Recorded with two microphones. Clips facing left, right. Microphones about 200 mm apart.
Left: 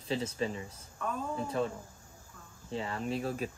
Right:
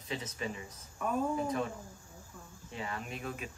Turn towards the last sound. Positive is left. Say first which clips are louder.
# left 7 dB
turn(degrees=35)  # may be behind; listen again after turning